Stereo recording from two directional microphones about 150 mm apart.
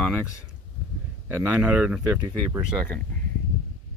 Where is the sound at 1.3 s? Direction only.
10° right (ahead or behind).